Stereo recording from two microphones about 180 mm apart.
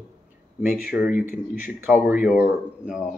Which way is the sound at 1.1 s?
45° left (ahead or behind).